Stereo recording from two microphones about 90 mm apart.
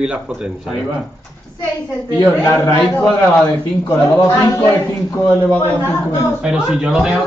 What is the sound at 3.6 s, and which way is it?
Speech, 45° left (ahead or behind).